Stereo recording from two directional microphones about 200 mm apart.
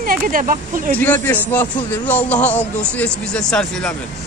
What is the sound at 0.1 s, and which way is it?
Speech, 45° right (ahead or behind).